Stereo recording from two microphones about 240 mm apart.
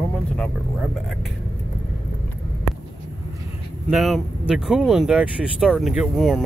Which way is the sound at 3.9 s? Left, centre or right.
Centre.